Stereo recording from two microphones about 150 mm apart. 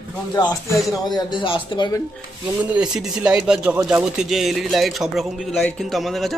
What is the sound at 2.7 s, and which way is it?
A man's voice, 5° right (ahead or behind).